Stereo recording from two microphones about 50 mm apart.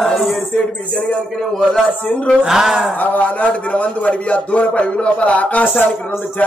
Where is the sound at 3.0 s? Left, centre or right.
Left.